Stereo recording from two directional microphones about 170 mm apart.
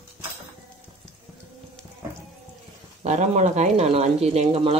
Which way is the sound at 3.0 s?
40° right (ahead or behind).